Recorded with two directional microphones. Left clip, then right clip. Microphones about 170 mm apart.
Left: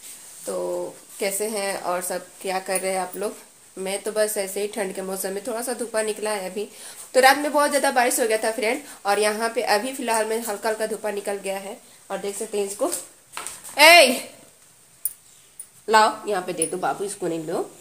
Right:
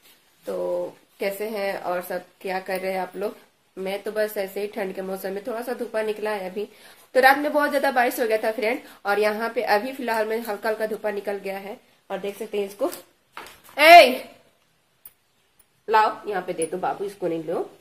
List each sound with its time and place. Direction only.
0.5 s speech: 15° left (ahead or behind)
12.4 s speech: 15° left (ahead or behind)
13.7 s a child's voice: 30° left (ahead or behind)
15.9 s speech: 35° left (ahead or behind)